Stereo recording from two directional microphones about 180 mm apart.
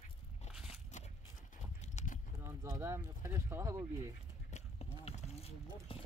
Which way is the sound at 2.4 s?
15° right (ahead or behind).